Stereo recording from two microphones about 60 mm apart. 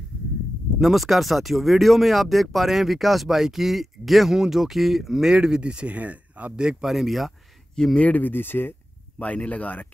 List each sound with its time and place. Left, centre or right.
0.7 s speech: centre
7.7 s speech: centre
8.0 s speech: left
9.2 s speech: left